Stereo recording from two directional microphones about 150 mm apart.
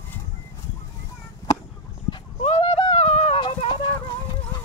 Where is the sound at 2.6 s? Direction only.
40° left (ahead or behind).